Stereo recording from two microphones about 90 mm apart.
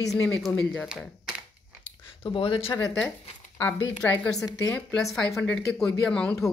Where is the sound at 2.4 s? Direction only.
80° left.